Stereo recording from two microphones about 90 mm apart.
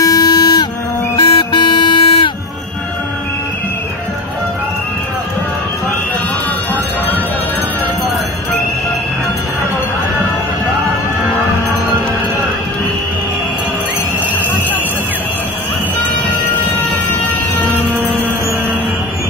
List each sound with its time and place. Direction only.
0.0 s a sound: 45° left (ahead or behind)
1.2 s music: 75° left (ahead or behind)
17.1 s music: 20° left (ahead or behind)